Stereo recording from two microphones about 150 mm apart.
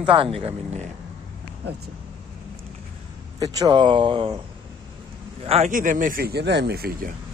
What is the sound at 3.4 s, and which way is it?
Speech, 25° right (ahead or behind).